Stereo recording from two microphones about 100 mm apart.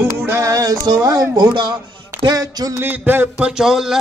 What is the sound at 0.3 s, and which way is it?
Speech, 30° right (ahead or behind).